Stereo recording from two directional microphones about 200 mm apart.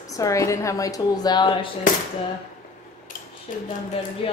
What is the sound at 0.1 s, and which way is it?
A woman's voice, 15° left (ahead or behind).